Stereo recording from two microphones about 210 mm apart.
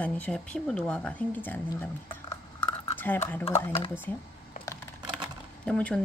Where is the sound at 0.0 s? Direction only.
5° left (ahead or behind).